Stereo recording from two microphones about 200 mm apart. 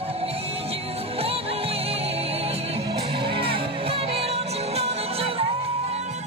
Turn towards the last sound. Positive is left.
turn(degrees=-30)  # may be behind; listen again after turning